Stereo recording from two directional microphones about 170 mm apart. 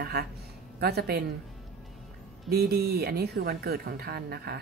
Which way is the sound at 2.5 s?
65° right (ahead or behind).